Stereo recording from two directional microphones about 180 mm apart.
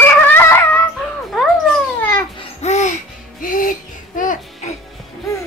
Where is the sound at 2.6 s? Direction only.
40° left (ahead or behind).